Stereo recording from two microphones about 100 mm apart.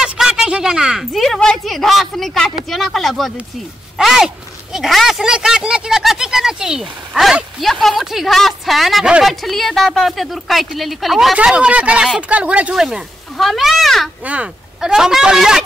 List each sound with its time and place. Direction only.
0.0 s speech: 5° right (ahead or behind)
14.2 s speech: 10° right (ahead or behind)